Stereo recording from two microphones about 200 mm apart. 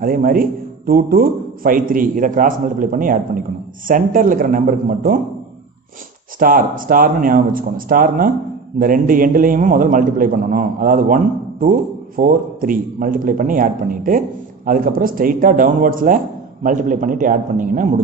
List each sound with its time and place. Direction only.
0.0 s a man's voice: 45° right (ahead or behind)
6.4 s a man's voice: 45° right (ahead or behind)